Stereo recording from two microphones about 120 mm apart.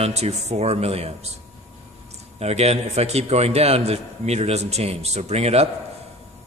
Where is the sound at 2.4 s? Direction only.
60° right (ahead or behind).